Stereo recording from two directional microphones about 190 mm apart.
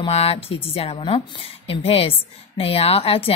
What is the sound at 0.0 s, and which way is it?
A woman's voice, 30° left (ahead or behind).